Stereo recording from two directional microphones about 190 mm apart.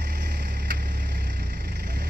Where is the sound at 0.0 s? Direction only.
60° right (ahead or behind).